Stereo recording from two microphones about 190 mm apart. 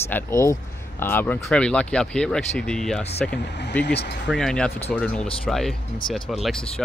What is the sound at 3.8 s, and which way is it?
Speech, 60° left (ahead or behind).